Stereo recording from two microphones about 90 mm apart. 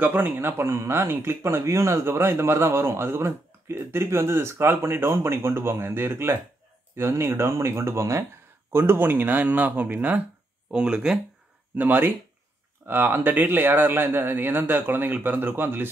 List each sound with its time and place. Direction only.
0.0 s speech: 25° right (ahead or behind)